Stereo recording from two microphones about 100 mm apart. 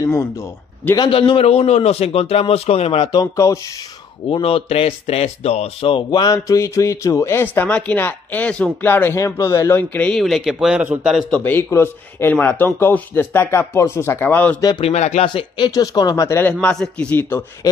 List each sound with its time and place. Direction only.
0.0 s speech: 30° left (ahead or behind)
1.1 s a man's voice: 55° left (ahead or behind)
1.4 s speech: 90° left; by 3.1 s 75° left (ahead or behind)
3.4 s speech: 30° left (ahead or behind)
4.4 s speech: 75° left (ahead or behind); by 6.3 s 50° left (ahead or behind)
6.3 s speech: 35° left (ahead or behind); by 10.1 s 15° left (ahead or behind)
10.1 s speech: centre (ahead or behind)
11.4 s speech: 25° left (ahead or behind)
14.8 s speech: 90° left
15.2 s speech: 55° left (ahead or behind)
15.7 s speech: 40° left (ahead or behind)
16.3 s speech: 25° left (ahead or behind)
16.6 s a man's voice: 10° left (ahead or behind)